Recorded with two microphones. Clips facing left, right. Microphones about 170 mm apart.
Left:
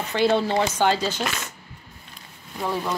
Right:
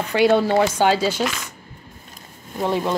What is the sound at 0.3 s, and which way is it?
Speech, 50° right (ahead or behind).